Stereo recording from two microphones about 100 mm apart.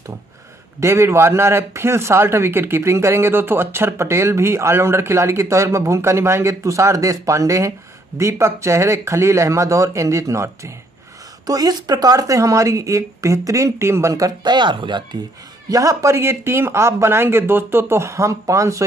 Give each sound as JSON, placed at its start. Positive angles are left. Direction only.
{"t": 0.7, "sound": "speech", "side_deg": -30}
{"t": 15.7, "sound": "speech", "side_deg": -35}